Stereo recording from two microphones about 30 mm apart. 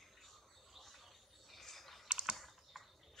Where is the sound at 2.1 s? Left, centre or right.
Right.